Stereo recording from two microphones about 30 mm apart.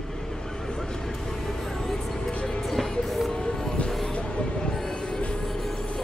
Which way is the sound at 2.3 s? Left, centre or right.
Left.